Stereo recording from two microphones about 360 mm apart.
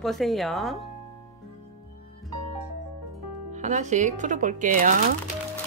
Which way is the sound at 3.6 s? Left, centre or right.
Centre.